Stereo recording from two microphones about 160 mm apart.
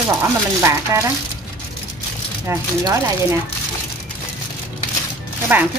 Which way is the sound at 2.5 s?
20° right (ahead or behind).